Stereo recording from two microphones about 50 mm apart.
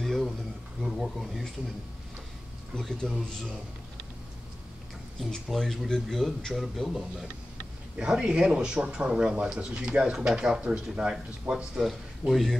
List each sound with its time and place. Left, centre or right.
0.0 s a sound: centre
0.8 s speech: centre
2.7 s speech: centre
5.5 s speech: centre
8.0 s speech: centre
11.9 s speech: centre